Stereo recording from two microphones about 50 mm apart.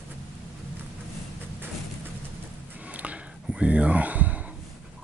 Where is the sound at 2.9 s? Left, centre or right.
Right.